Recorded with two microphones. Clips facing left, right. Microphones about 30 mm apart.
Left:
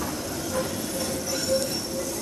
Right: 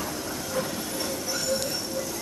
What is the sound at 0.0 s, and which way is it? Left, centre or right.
Vehicle, centre.